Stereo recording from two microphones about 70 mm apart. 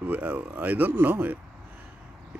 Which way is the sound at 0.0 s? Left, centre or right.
Right.